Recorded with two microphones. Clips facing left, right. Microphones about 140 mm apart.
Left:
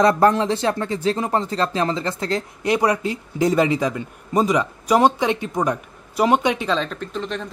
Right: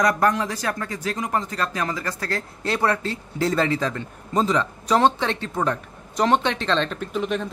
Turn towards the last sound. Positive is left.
turn(degrees=-5)  # may be behind; listen again after turning